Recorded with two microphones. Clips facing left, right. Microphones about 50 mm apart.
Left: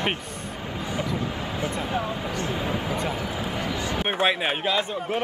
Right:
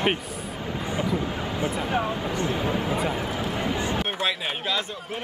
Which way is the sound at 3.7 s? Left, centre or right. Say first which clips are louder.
Right 2 dB; right.